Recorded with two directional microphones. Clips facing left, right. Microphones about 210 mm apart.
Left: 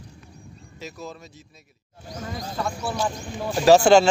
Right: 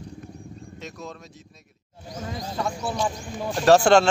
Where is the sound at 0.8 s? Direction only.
5° left (ahead or behind).